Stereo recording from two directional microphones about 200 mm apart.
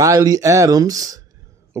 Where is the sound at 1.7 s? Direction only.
10° right (ahead or behind).